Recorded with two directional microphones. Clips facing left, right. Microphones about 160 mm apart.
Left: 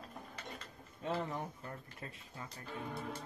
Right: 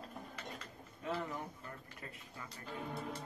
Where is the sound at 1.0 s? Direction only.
25° left (ahead or behind).